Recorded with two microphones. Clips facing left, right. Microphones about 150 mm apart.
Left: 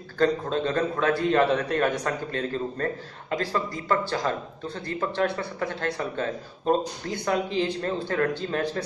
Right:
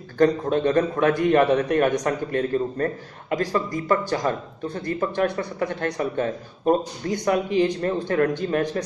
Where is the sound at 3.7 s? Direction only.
15° right (ahead or behind).